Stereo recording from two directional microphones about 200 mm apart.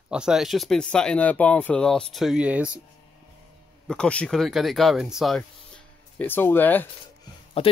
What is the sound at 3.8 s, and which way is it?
Speech, 5° left (ahead or behind).